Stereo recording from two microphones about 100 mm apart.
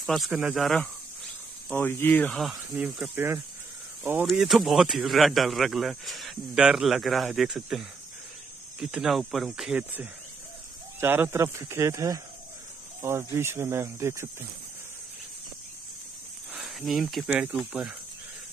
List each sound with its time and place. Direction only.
0.0 s speech: centre (ahead or behind)
1.8 s speech: 20° left (ahead or behind)
2.3 s speech: centre (ahead or behind)
2.8 s speech: 15° right (ahead or behind)
4.2 s speech: 5° right (ahead or behind)
11.0 s speech: 25° right (ahead or behind)
16.5 s speech: 5° right (ahead or behind)
17.3 s speech: 10° right (ahead or behind)